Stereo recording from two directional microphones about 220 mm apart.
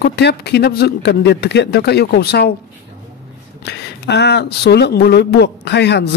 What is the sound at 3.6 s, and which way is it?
Speech, 50° left (ahead or behind).